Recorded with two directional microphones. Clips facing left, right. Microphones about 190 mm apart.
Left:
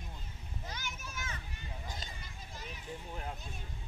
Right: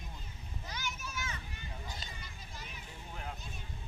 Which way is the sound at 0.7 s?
50° left (ahead or behind).